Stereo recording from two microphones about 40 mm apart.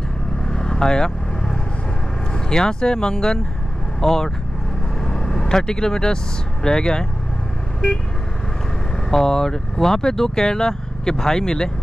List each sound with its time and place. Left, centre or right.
0.5 s vehicle: centre
2.5 s speech: centre
5.0 s vehicle: centre
6.6 s speech: centre
9.1 s speech: centre